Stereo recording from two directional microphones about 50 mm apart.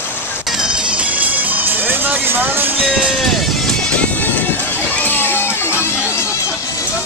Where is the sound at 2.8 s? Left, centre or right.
Right.